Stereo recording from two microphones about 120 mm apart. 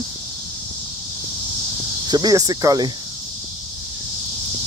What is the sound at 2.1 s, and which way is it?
Speech, 35° right (ahead or behind).